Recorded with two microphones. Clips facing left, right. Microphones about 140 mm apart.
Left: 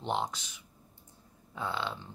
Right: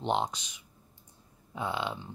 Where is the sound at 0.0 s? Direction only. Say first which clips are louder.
Right 3 dB; 20° right (ahead or behind).